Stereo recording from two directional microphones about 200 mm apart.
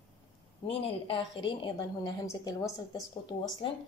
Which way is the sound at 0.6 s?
25° left (ahead or behind).